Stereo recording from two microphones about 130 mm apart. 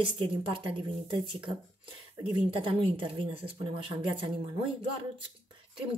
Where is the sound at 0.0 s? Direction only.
40° right (ahead or behind).